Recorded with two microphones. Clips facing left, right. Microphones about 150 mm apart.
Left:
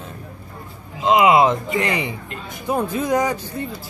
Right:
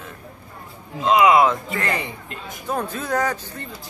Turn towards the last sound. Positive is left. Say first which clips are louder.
# left 3 dB
turn(degrees=10)  # may be behind; listen again after turning